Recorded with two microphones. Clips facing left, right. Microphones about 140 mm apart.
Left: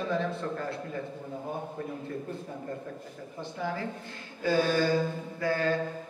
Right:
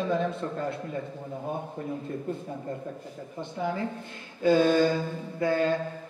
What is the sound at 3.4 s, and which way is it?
A man's voice, 25° right (ahead or behind).